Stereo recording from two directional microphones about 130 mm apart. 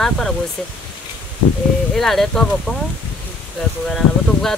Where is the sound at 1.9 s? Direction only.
Centre (ahead or behind).